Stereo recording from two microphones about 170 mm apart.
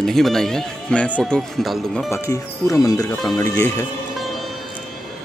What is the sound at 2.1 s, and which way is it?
Speech, 15° left (ahead or behind).